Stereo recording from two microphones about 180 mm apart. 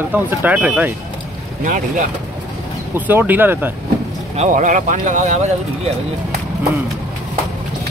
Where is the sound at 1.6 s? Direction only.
45° right (ahead or behind).